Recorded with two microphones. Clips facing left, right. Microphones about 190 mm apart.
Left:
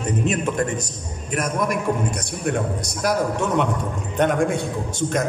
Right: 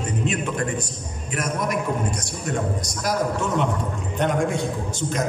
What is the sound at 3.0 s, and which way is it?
Speech, 60° left (ahead or behind).